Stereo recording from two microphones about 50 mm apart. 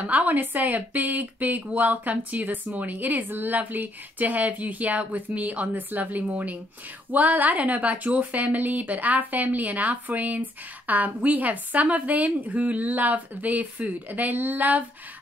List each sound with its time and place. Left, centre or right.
0.0 s speech: right